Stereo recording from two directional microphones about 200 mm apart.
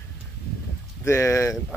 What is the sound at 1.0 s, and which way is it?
Speech, 15° left (ahead or behind).